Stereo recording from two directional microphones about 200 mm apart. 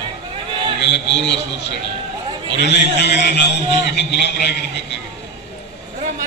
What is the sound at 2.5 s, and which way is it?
A man's voice, 60° left (ahead or behind).